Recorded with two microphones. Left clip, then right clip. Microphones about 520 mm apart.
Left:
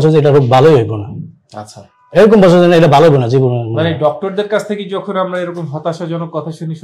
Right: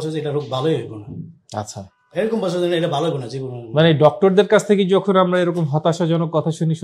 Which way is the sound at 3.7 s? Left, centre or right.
Right.